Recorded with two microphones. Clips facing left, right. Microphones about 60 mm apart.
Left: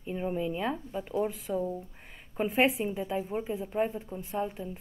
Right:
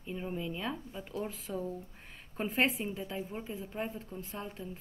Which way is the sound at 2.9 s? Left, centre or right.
Left.